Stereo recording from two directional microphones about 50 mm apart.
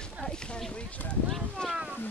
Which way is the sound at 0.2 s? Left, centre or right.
Left.